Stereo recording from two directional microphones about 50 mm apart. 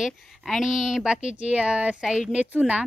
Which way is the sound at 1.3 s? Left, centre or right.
Right.